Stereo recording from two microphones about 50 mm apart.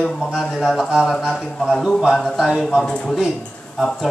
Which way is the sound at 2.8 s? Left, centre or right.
Centre.